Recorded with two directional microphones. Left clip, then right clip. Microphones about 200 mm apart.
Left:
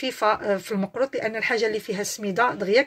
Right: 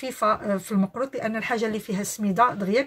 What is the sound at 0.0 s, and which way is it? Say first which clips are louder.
Speech: left 1 dB; 15° left (ahead or behind).